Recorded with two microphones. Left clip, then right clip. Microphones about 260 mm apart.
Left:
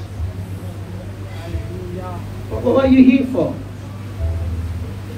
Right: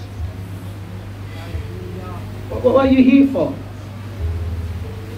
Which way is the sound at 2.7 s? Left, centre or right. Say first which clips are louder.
Left 2 dB; right.